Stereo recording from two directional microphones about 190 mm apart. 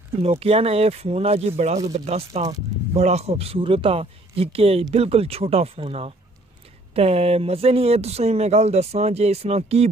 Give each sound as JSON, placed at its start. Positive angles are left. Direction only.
{"t": 0.2, "sound": "speech", "side_deg": -35}